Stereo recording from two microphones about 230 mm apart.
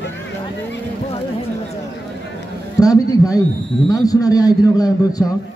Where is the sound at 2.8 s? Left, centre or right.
Centre.